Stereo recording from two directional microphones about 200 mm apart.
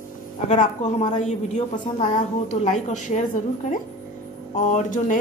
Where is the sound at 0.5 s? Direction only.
35° left (ahead or behind).